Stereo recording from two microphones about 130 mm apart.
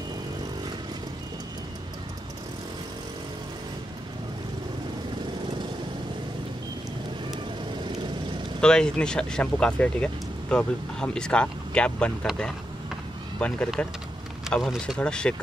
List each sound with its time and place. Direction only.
8.5 s speech: 5° left (ahead or behind)